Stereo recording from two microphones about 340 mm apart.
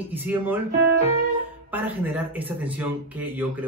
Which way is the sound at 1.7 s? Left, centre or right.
Centre.